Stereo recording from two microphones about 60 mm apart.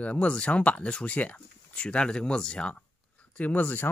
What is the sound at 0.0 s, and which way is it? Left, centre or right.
Speech, left.